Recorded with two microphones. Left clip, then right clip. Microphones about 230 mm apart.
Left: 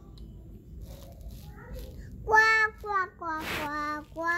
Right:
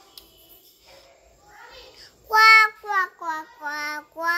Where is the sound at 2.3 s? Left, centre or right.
Centre.